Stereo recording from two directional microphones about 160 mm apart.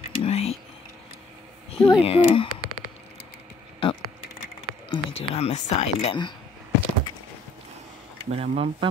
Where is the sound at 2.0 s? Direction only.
35° left (ahead or behind).